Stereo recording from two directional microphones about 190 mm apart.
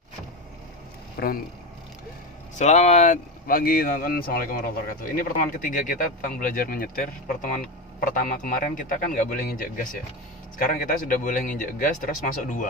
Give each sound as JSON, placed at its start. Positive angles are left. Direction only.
{"t": 1.2, "sound": "speech", "side_deg": 55}
{"t": 2.5, "sound": "speech", "side_deg": 35}